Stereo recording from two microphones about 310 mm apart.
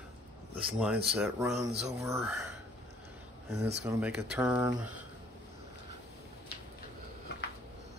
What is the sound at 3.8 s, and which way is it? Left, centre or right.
Speech, centre.